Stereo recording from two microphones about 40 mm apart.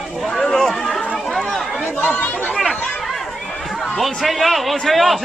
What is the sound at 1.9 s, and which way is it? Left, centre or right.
Chatter, left.